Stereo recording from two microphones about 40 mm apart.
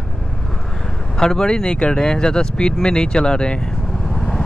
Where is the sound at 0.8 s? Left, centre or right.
Centre.